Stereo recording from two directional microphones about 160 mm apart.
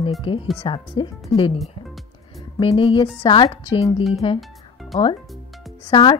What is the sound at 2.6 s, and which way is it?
Speech, 35° left (ahead or behind).